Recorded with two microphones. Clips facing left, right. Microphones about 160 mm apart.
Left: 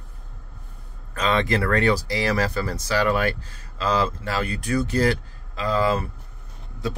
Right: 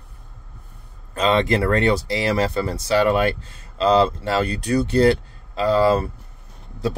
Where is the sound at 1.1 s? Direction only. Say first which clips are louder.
Right 4 dB; 25° right (ahead or behind).